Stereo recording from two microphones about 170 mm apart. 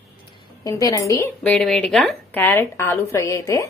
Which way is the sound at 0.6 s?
20° left (ahead or behind).